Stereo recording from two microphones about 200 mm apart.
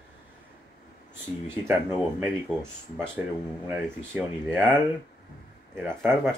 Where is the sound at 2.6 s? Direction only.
10° right (ahead or behind).